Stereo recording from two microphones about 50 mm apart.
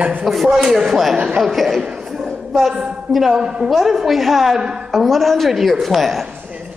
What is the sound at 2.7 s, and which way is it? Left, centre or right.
Speech, centre.